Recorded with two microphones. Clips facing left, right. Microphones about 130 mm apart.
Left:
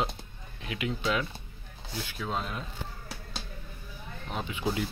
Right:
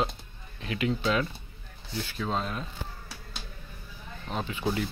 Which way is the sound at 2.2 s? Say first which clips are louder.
Right 3 dB; 5° right (ahead or behind).